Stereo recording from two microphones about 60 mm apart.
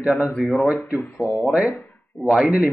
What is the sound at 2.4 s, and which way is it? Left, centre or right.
Speech, right.